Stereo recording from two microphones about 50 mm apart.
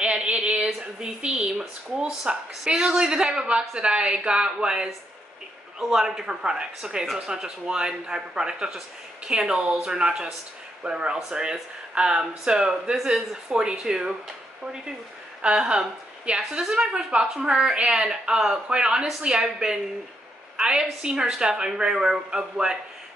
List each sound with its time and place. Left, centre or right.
0.0 s a sound: right
0.7 s a woman's voice: centre
15.6 s a woman's voice: centre